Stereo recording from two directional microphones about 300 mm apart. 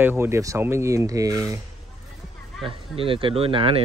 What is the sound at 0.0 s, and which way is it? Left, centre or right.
Speech, centre.